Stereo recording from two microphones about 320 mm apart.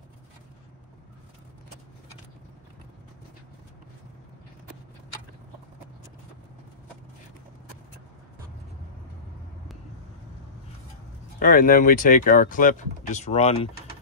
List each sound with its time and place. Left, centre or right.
11.3 s speech: left